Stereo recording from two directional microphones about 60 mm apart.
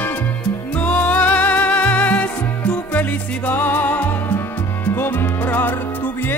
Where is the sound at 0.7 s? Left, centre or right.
Left.